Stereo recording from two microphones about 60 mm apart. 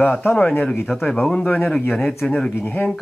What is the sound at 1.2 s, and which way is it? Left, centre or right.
Speech, centre.